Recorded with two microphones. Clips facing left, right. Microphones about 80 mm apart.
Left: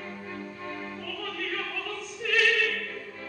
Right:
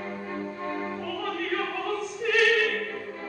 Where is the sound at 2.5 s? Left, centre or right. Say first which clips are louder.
Right 3 dB; right.